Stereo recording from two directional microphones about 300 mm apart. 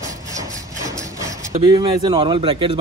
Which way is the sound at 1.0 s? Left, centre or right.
Centre.